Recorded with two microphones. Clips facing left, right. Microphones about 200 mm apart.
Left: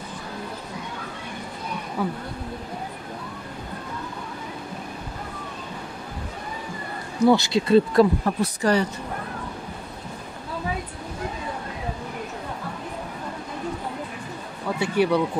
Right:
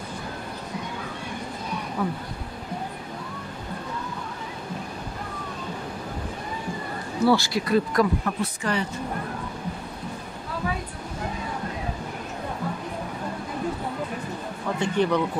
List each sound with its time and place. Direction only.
2.0 s speech: 5° left (ahead or behind)
7.2 s speech: 20° left (ahead or behind); by 8.8 s 40° left (ahead or behind)
14.8 s speech: 10° left (ahead or behind)